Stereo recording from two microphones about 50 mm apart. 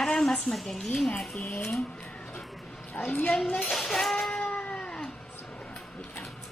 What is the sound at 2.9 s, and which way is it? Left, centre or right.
Speech, left.